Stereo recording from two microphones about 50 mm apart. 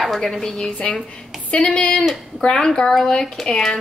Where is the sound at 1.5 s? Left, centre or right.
Left.